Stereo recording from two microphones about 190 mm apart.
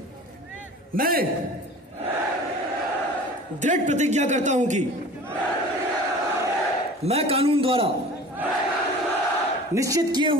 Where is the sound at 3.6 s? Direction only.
40° right (ahead or behind).